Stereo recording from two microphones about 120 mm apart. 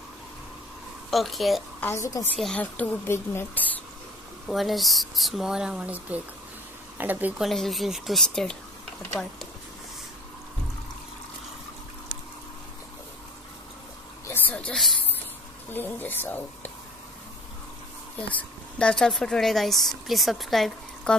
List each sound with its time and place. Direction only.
1.1 s a woman's voice: centre (ahead or behind)
1.8 s a woman's voice: 20° left (ahead or behind)
2.3 s a woman's voice: 5° left (ahead or behind)
4.5 s a woman's voice: centre (ahead or behind)
7.4 s a woman's voice: centre (ahead or behind)
14.2 s a sound: 15° left (ahead or behind)
15.7 s a woman's voice: 15° left (ahead or behind)
18.3 s a woman's voice: 10° left (ahead or behind)